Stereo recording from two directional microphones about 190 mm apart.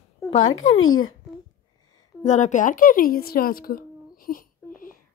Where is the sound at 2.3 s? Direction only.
40° left (ahead or behind).